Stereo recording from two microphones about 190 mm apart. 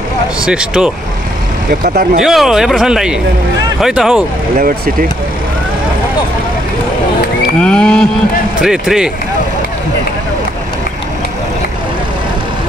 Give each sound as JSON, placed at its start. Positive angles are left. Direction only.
{"t": 0.5, "sound": "speech", "side_deg": -5}
{"t": 1.7, "sound": "speech", "side_deg": -45}
{"t": 2.2, "sound": "speech", "side_deg": 0}
{"t": 4.6, "sound": "speech", "side_deg": -50}
{"t": 7.6, "sound": "speech", "side_deg": 5}